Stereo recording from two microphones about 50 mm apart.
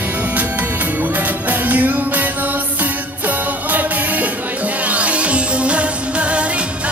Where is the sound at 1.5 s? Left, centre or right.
Right.